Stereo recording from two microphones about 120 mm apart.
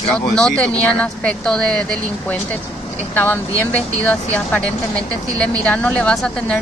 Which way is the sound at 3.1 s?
15° left (ahead or behind).